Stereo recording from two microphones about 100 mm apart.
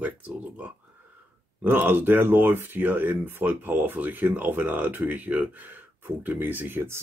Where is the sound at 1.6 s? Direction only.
20° right (ahead or behind).